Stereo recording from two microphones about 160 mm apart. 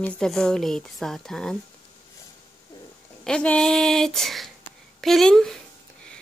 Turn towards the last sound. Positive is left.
turn(degrees=5)  # may be behind; listen again after turning